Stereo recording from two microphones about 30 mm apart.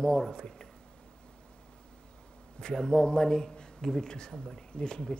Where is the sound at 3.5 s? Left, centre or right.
Left.